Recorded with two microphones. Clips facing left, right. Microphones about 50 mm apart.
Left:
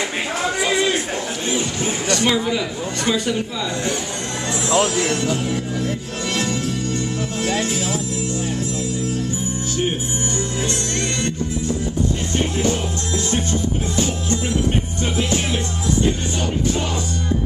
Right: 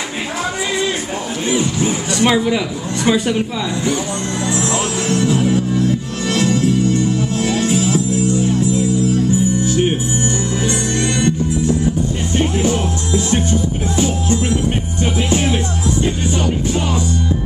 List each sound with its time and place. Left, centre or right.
2.1 s speech: right
15.1 s music: centre